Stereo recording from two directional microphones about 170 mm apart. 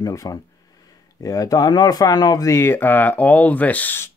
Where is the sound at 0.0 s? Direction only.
20° left (ahead or behind).